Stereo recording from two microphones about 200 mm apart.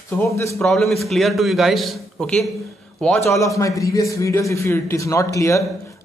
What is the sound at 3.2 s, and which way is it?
A man's voice, 15° left (ahead or behind).